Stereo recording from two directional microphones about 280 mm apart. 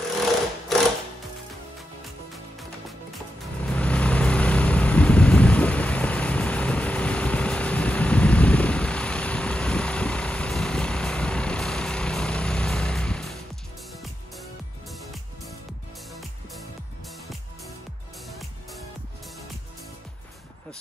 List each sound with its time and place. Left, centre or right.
3.6 s vehicle: centre
14.9 s music: centre